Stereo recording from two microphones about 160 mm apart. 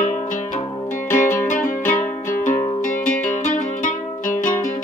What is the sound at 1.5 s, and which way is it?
Music, 55° left (ahead or behind).